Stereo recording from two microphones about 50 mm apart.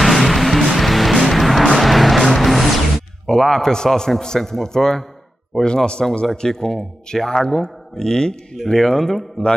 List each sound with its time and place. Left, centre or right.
0.0 s music: centre
3.3 s a man's voice: centre